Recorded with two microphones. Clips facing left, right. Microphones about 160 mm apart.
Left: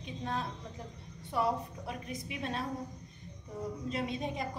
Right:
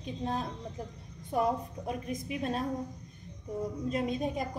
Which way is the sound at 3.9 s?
45° right (ahead or behind).